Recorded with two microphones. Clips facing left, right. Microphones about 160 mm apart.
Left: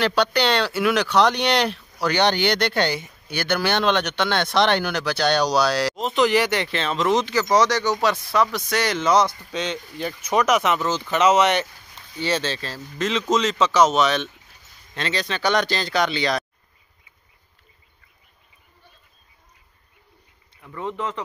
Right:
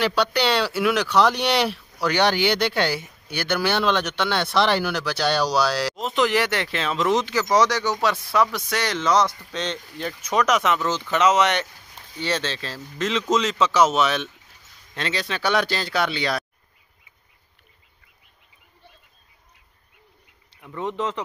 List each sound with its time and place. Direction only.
0.0 s speech: 5° right (ahead or behind)
20.6 s speech: 20° right (ahead or behind)